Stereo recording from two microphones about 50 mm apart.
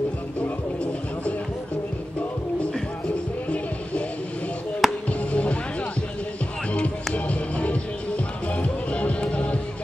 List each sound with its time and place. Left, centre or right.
3.4 s music: left
4.8 s music: centre
5.3 s music: left
7.2 s music: left